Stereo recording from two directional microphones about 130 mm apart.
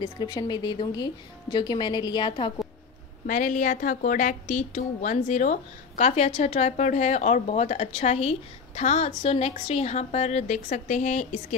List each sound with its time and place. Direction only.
0.0 s speech: 35° left (ahead or behind)
3.3 s a woman's voice: 80° left